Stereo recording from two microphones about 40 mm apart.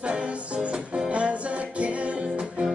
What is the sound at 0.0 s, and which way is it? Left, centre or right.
Music, right.